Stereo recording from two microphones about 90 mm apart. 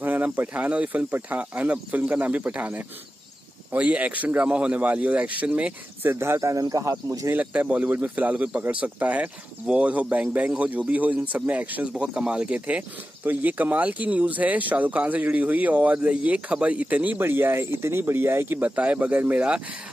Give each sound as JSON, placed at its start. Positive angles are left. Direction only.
{"t": 0.0, "sound": "speech", "side_deg": -20}
{"t": 6.0, "sound": "speech", "side_deg": -30}
{"t": 7.3, "sound": "speech", "side_deg": -15}
{"t": 18.8, "sound": "speech", "side_deg": -15}